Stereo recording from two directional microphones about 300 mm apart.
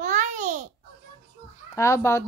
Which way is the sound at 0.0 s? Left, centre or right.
Right.